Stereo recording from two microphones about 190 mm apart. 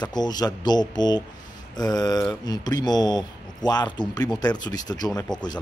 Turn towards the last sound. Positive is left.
turn(degrees=20)  # may be behind; listen again after turning